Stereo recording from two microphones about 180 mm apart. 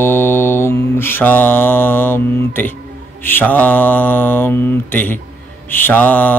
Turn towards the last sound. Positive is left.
turn(degrees=10)  # may be behind; listen again after turning